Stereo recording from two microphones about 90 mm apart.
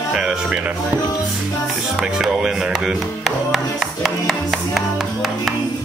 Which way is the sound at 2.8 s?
Centre (ahead or behind).